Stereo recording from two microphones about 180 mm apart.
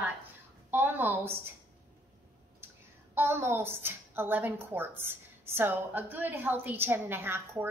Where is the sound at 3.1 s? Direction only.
10° right (ahead or behind).